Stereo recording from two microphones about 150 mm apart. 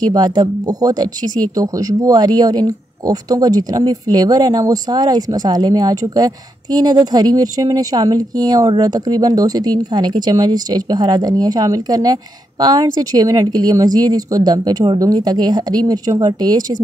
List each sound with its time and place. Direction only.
0.0 s speech: 25° right (ahead or behind)